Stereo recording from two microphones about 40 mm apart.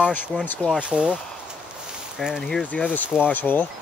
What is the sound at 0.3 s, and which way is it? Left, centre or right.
Speech, centre.